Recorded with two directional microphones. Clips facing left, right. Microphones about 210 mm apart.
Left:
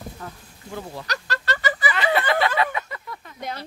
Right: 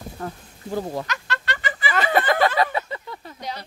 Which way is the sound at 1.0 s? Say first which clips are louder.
Left 1 dB; 40° left (ahead or behind).